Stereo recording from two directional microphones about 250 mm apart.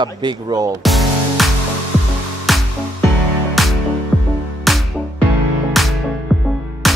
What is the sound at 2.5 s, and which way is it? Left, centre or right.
Music, centre.